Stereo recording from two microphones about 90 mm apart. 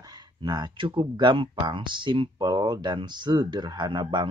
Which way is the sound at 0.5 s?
60° right (ahead or behind).